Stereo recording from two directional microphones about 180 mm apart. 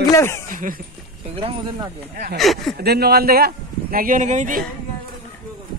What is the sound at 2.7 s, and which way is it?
A man's voice, 60° right (ahead or behind).